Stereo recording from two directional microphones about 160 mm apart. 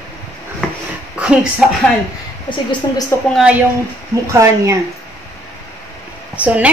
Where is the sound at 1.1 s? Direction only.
5° right (ahead or behind).